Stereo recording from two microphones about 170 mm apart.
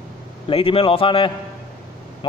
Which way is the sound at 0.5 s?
35° left (ahead or behind).